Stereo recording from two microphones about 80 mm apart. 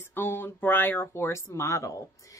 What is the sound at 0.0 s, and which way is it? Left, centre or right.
Speech, left.